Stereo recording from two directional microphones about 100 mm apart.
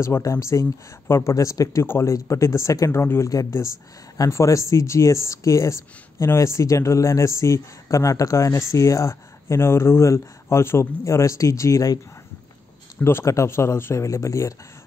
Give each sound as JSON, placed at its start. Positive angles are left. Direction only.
{"t": 0.0, "sound": "speech", "side_deg": 30}
{"t": 13.0, "sound": "speech", "side_deg": 25}